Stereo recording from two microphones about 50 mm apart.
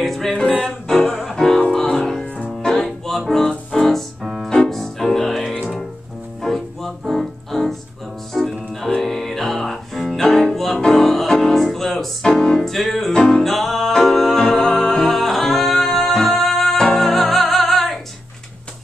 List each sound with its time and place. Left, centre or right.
0.0 s music: centre